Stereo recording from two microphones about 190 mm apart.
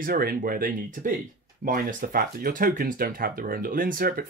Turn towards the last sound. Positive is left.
turn(degrees=-50)  # may be behind; listen again after turning